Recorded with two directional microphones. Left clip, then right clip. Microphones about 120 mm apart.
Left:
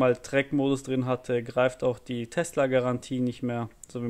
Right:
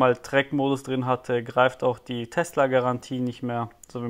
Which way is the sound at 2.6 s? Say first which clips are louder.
Right 3 dB; 20° left (ahead or behind).